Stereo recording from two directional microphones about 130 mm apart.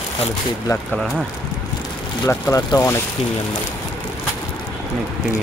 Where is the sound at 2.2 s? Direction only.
25° left (ahead or behind).